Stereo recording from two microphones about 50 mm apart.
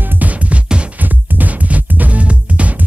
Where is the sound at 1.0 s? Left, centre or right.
Right.